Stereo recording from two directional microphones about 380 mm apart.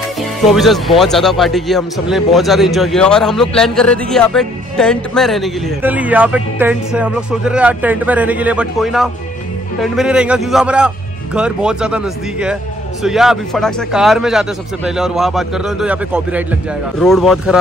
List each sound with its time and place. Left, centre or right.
0.2 s speech: centre